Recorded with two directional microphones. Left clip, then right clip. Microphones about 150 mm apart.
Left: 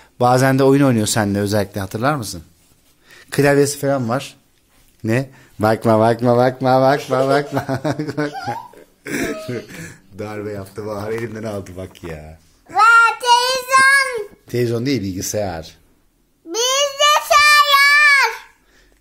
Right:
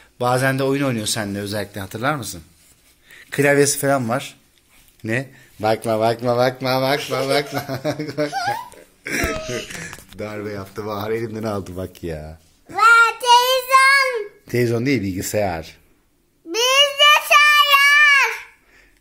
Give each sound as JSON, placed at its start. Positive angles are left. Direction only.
{"t": 0.0, "sound": "a man's voice", "side_deg": 75}
{"t": 3.1, "sound": "a sound", "side_deg": 55}
{"t": 3.5, "sound": "speech", "side_deg": 25}
{"t": 4.1, "sound": "speech", "side_deg": 40}
{"t": 5.6, "sound": "a man's voice", "side_deg": 90}
{"t": 8.5, "sound": "a sound", "side_deg": 60}
{"t": 10.1, "sound": "speech", "side_deg": 30}
{"t": 10.4, "sound": "speech", "side_deg": 0}
{"t": 11.7, "sound": "speech", "side_deg": -45}
{"t": 12.7, "sound": "child singing", "side_deg": -5}
{"t": 13.7, "sound": "babbling", "side_deg": -5}
{"t": 16.5, "sound": "child singing", "side_deg": 0}